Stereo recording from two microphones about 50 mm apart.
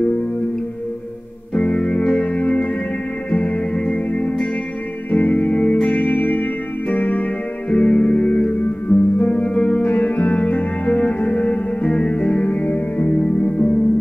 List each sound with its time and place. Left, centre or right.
1.5 s music: left